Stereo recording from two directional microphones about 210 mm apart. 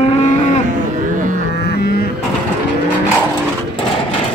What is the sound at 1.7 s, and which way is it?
Cattle, 50° left (ahead or behind).